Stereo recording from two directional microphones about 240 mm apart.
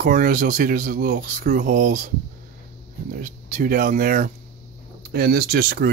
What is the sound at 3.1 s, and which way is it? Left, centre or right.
Speech, right.